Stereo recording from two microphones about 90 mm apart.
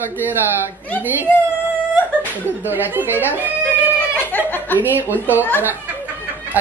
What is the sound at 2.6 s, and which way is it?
Speech, 20° right (ahead or behind).